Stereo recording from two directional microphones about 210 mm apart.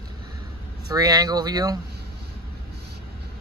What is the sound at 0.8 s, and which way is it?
Speech, 20° right (ahead or behind).